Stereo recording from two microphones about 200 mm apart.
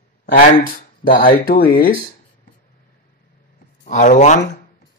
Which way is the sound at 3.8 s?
40° left (ahead or behind).